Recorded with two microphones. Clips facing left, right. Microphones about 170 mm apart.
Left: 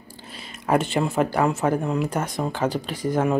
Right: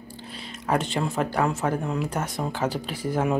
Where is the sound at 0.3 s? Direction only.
5° left (ahead or behind).